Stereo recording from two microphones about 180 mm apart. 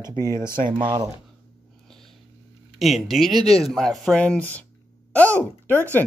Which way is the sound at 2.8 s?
Centre (ahead or behind).